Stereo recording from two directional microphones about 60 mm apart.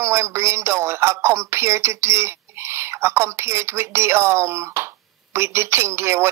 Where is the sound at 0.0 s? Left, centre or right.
Right.